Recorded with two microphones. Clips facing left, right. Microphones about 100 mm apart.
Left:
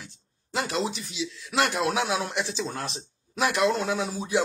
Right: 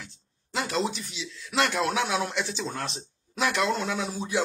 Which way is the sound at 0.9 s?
35° left (ahead or behind).